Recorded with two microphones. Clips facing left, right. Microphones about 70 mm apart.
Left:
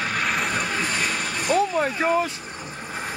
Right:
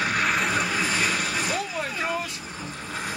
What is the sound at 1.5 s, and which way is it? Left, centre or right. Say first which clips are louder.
Speech: left 8 dB; left.